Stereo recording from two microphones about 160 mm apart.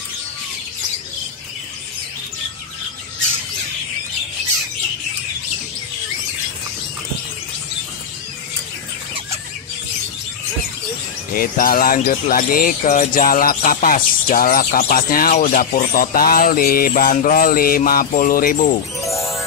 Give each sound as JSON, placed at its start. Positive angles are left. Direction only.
{"t": 11.3, "sound": "speech", "side_deg": 65}
{"t": 19.0, "sound": "music", "side_deg": 0}